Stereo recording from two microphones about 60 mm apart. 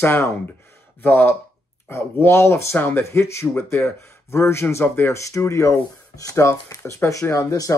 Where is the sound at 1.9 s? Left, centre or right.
Left.